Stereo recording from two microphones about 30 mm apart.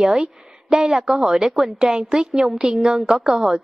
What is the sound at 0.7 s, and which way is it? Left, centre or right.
A woman's voice, right.